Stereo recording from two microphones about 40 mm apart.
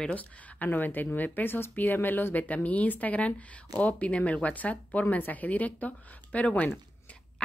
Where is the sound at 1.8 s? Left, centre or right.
Left.